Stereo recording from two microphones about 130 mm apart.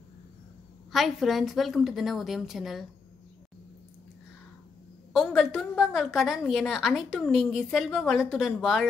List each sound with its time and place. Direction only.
0.9 s a woman's voice: centre (ahead or behind)
5.1 s a woman's voice: centre (ahead or behind)